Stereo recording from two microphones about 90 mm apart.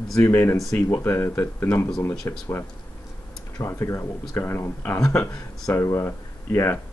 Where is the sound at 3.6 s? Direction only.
30° left (ahead or behind).